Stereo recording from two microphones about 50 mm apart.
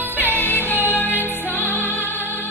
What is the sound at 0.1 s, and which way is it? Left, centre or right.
Music, left.